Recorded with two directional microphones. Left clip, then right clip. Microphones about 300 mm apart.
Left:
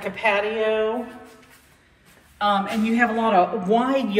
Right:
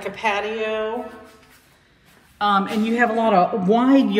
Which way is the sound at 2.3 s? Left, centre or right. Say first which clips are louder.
Right 2 dB; centre.